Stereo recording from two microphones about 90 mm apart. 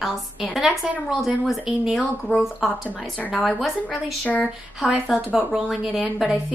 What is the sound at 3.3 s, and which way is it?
A woman's voice, centre (ahead or behind).